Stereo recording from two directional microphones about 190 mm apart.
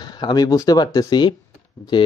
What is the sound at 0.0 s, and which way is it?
Speech, 20° left (ahead or behind).